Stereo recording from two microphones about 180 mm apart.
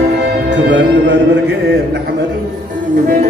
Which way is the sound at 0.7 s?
80° right.